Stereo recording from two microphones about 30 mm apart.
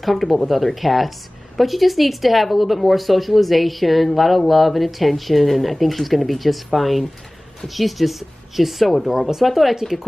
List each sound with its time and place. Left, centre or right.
0.0 s speech: centre